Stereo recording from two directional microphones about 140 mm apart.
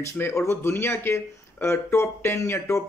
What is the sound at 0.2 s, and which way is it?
Speech, 20° left (ahead or behind).